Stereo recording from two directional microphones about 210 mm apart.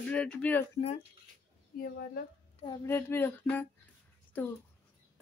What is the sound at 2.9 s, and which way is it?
Speech, 10° left (ahead or behind).